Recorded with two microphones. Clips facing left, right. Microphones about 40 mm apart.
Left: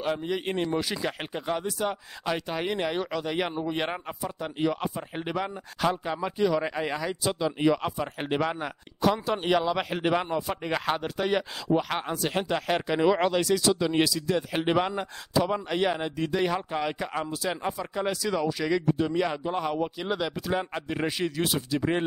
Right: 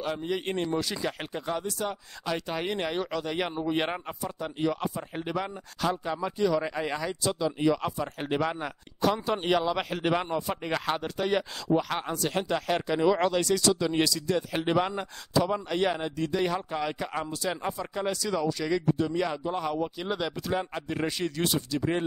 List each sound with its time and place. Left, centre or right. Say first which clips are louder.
0.0 s speech: left 2 dB; centre
0.7 s speech: left 1 dB; centre
2.4 s speech: left 2 dB; centre
4.2 s speech: left 2 dB; centre
7.2 s speech: left 1 dB; left
20.0 s speech: left 1 dB; centre